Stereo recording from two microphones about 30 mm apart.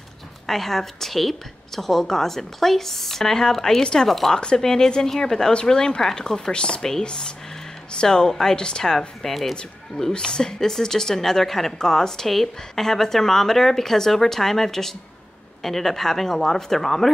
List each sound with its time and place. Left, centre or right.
0.5 s a woman's voice: centre; by 6.8 s left
6.8 s a woman's voice: centre
8.9 s speech: centre
10.1 s speech: left; by 17.1 s centre